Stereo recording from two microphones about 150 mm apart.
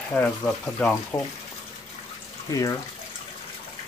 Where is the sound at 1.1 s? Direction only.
20° left (ahead or behind).